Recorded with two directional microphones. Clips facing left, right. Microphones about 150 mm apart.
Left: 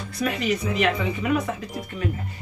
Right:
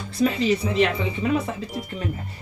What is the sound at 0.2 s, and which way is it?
Speech, 30° right (ahead or behind).